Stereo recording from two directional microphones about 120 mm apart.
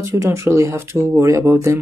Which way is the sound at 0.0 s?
25° right (ahead or behind).